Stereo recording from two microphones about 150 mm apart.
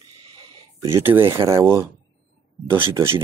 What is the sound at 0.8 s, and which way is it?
Speech, 15° right (ahead or behind).